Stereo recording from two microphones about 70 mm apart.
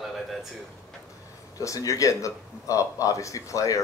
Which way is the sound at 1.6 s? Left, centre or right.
Left.